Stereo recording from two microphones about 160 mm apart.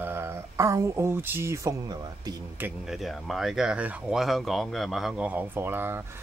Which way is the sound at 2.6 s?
Centre (ahead or behind).